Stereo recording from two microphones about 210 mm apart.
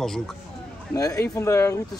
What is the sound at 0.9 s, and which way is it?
Speech, 15° left (ahead or behind).